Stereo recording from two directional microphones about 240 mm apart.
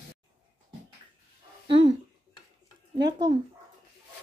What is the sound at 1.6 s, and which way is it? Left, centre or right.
Speech, centre.